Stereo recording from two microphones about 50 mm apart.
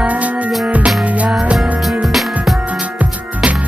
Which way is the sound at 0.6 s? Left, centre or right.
Right.